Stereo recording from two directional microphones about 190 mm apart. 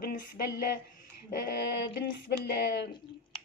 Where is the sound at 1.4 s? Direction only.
60° left (ahead or behind).